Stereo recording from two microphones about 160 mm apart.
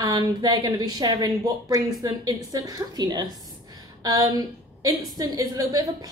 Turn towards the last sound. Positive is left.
turn(degrees=-25)  # may be behind; listen again after turning